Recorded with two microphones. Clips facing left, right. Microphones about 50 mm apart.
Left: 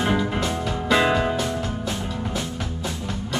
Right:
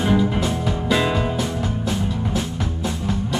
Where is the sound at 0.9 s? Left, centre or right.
Centre.